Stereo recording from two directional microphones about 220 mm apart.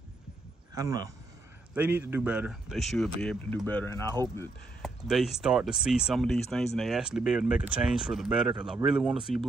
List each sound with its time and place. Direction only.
0.7 s speech: 15° right (ahead or behind); by 4.0 s 10° left (ahead or behind)
4.8 s speech: centre (ahead or behind)